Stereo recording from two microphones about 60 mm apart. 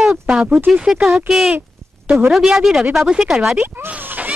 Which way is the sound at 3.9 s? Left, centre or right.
Right.